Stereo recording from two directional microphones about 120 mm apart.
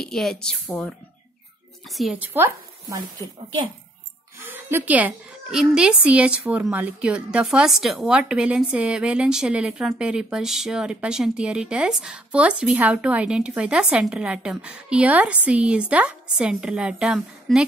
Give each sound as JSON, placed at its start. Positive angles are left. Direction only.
{"t": 0.0, "sound": "speech", "side_deg": 5}
{"t": 2.1, "sound": "speech", "side_deg": -20}
{"t": 4.4, "sound": "a child's voice", "side_deg": -15}